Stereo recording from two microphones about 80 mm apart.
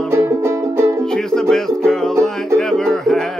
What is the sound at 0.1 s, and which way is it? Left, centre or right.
Music, right.